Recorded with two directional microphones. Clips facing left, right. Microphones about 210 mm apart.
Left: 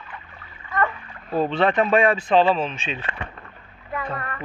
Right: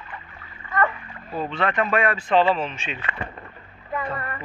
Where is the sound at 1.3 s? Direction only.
30° left (ahead or behind).